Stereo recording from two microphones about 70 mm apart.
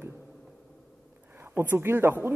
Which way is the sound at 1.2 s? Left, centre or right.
Right.